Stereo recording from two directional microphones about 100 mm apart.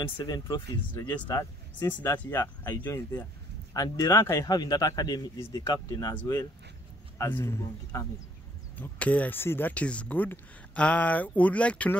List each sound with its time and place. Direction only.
0.2 s speech: 45° left (ahead or behind)
2.1 s speech: 20° left (ahead or behind)
3.7 s speech: 40° left (ahead or behind)
7.2 s speech: 20° left (ahead or behind)
8.7 s speech: 15° left (ahead or behind)